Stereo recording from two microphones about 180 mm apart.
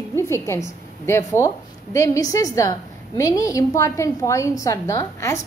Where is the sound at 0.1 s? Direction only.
15° left (ahead or behind).